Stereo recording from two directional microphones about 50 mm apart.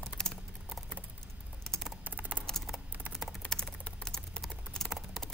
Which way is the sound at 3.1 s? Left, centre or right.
Centre.